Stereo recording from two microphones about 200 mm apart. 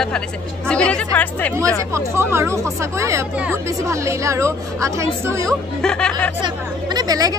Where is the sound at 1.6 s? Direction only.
15° right (ahead or behind).